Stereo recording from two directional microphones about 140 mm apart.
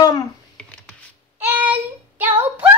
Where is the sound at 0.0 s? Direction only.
25° left (ahead or behind).